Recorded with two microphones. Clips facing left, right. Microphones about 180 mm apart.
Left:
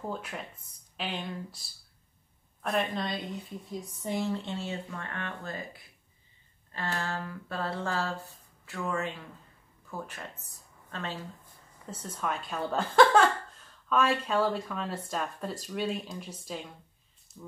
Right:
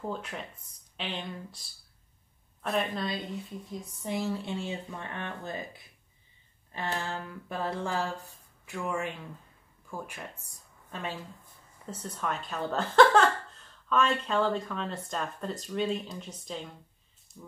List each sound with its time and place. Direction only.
0.9 s a woman's voice: 5° left (ahead or behind)
2.6 s a woman's voice: centre (ahead or behind)
12.0 s a woman's voice: centre (ahead or behind)
17.3 s a sound: centre (ahead or behind)